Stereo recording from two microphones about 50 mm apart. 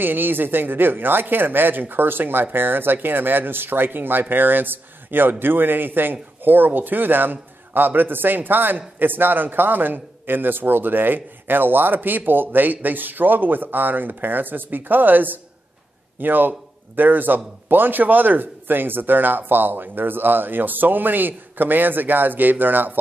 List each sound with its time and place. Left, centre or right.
0.0 s a woman's voice: right